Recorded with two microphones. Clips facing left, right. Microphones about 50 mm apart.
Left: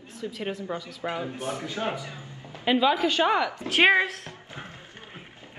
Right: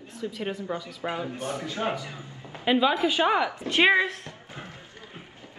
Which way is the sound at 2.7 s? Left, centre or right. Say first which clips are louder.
Even; centre.